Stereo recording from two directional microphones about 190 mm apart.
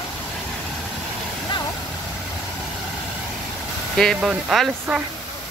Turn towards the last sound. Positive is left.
turn(degrees=-5)  # may be behind; listen again after turning